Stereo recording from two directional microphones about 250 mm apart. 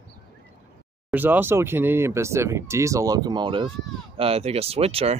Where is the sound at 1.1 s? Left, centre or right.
Centre.